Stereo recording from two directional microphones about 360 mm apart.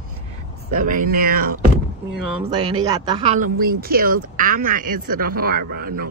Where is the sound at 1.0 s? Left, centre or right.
Right.